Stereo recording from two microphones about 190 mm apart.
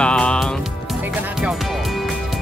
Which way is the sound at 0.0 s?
5° left (ahead or behind).